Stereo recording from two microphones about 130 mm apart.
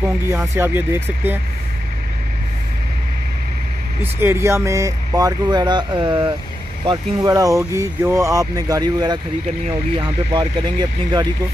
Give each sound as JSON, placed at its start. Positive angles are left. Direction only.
{"t": 0.6, "sound": "speech", "side_deg": -20}
{"t": 4.0, "sound": "speech", "side_deg": -20}